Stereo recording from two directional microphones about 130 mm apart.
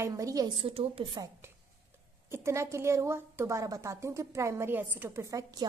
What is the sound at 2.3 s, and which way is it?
A woman's voice, 20° right (ahead or behind).